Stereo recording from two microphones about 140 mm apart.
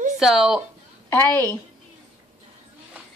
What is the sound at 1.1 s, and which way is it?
Speech, 15° left (ahead or behind).